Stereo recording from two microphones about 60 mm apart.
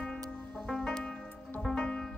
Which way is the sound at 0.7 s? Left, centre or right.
Centre.